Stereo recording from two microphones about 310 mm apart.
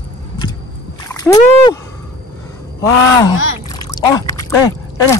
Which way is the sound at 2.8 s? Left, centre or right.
Centre.